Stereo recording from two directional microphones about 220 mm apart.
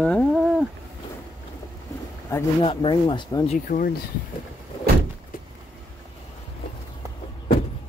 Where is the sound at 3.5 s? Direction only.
40° left (ahead or behind).